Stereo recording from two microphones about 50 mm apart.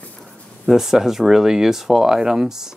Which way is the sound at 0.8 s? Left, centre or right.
Centre.